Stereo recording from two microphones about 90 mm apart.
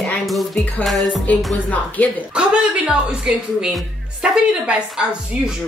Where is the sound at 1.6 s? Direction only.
15° left (ahead or behind).